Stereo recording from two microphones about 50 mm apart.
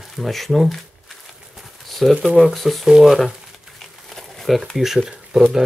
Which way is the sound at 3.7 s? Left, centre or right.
Centre.